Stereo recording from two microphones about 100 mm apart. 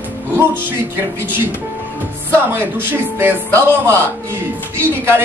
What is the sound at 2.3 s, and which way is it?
Speech, 20° right (ahead or behind).